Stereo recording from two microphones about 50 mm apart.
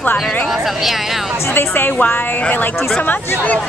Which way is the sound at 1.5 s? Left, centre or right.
Left.